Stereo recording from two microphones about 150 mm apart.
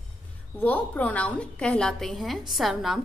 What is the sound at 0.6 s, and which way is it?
A woman's voice, 10° left (ahead or behind).